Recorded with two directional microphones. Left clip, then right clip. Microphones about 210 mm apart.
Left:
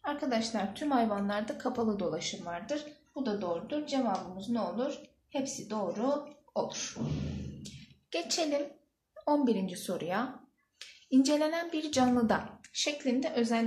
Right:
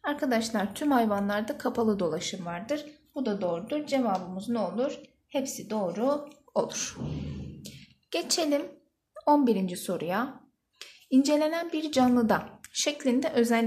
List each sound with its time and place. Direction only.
0.0 s speech: 45° right (ahead or behind)
7.6 s a sound: 35° right (ahead or behind)
9.2 s speech: 35° right (ahead or behind)
12.7 s speech: 45° right (ahead or behind)